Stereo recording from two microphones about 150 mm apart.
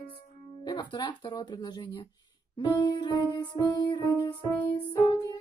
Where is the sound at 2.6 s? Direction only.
30° left (ahead or behind).